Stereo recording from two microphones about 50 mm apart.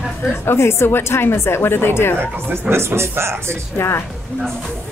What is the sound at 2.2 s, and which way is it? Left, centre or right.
Speech, right.